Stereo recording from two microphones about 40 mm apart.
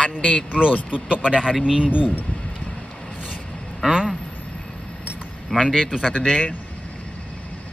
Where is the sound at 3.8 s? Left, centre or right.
Centre.